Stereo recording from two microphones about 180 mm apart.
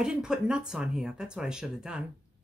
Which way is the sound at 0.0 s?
5° right (ahead or behind).